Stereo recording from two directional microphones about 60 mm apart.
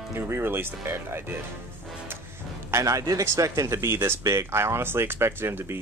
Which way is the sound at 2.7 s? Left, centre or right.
Right.